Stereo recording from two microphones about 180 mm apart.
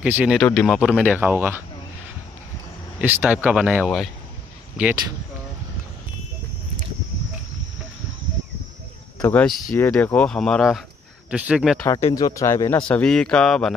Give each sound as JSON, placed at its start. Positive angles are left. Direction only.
{"t": 0.0, "sound": "speech", "side_deg": -5}
{"t": 3.0, "sound": "speech", "side_deg": -10}
{"t": 9.2, "sound": "speech", "side_deg": 10}
{"t": 12.1, "sound": "speech", "side_deg": 20}
{"t": 12.8, "sound": "speech", "side_deg": 5}